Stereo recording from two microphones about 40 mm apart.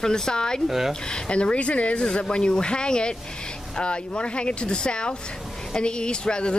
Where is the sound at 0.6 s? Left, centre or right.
Centre.